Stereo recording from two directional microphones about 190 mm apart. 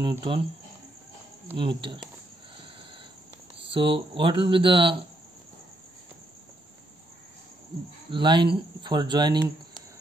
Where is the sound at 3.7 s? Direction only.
25° right (ahead or behind).